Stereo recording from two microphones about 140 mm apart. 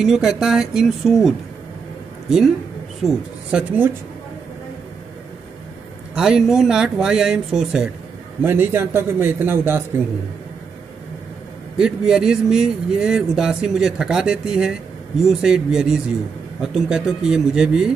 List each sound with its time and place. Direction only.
0.0 s speech: 5° right (ahead or behind)
6.1 s a man's voice: 5° right (ahead or behind)
11.7 s speech: 5° right (ahead or behind)